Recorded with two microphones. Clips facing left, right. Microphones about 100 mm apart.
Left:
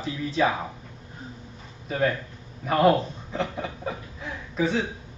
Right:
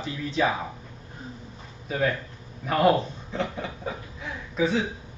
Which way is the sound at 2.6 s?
Centre (ahead or behind).